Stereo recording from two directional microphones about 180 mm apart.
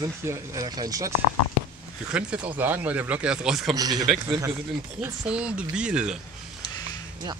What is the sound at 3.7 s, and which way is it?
Speech, 20° right (ahead or behind).